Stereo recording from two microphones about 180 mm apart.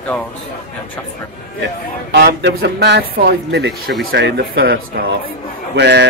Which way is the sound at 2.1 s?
65° right (ahead or behind).